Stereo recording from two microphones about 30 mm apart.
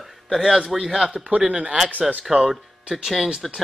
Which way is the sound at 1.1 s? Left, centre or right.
Right.